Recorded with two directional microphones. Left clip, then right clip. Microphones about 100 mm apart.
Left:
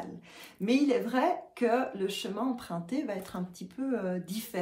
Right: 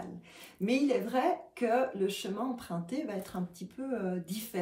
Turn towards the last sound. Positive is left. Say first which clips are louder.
# left 2 dB
turn(degrees=35)  # may be behind; listen again after turning